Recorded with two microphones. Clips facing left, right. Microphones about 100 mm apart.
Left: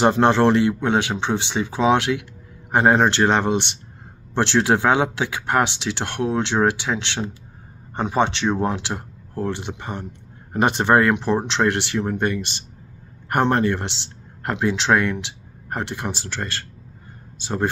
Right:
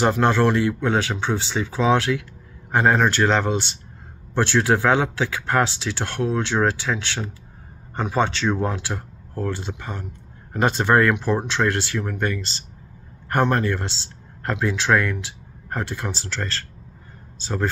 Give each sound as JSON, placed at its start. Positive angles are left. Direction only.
{"t": 0.0, "sound": "a man's voice", "side_deg": 25}